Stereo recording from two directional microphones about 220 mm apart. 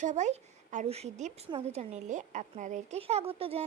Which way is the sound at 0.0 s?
30° right (ahead or behind).